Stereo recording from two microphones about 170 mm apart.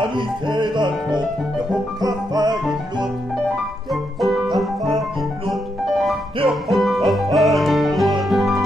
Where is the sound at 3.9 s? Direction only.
Centre (ahead or behind).